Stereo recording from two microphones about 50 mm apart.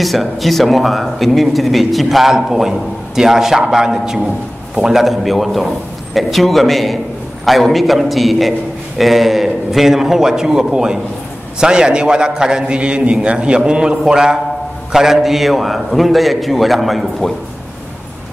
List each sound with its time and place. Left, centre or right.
0.0 s a man's voice: centre